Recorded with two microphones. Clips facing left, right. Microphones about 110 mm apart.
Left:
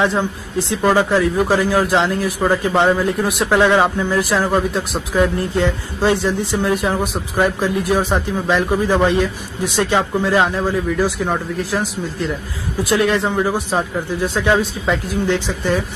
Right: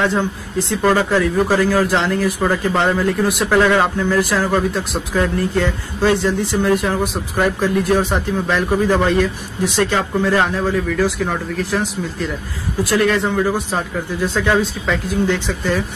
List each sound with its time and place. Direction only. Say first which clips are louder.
0.0 s speech: even; 15° left (ahead or behind)
12.9 s speech: even; 20° left (ahead or behind)